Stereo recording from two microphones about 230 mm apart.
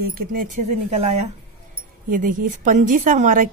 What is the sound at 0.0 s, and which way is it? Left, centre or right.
A woman's voice, right.